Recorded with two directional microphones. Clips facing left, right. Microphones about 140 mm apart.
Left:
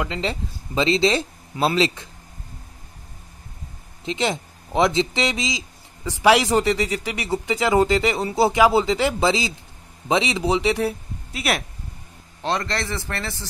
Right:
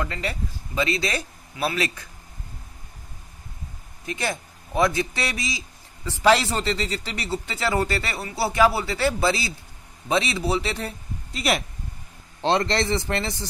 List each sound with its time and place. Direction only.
0.0 s speech: 20° left (ahead or behind)
4.0 s a man's voice: 20° left (ahead or behind)
12.4 s a man's voice: 25° right (ahead or behind)